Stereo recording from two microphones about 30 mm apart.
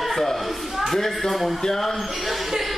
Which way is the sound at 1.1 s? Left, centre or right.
Centre.